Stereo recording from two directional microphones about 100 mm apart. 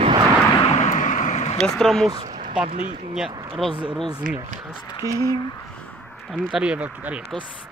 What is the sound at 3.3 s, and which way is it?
Speech, 50° right (ahead or behind).